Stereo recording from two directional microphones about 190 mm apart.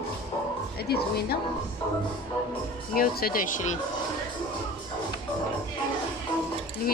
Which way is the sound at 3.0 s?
50° left (ahead or behind).